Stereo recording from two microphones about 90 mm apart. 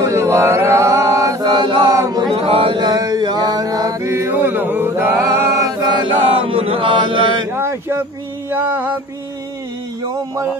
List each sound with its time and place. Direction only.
0.0 s chant: 35° right (ahead or behind)
1.4 s chant: 55° right (ahead or behind)
1.9 s chant: 40° right (ahead or behind)
2.3 s mantra: 90° right
2.8 s mantra: 45° right (ahead or behind)
6.3 s chant: 90° right; by 7.4 s 65° right (ahead or behind)
7.5 s a sound: 25° right (ahead or behind)
8.5 s music: 20° right (ahead or behind)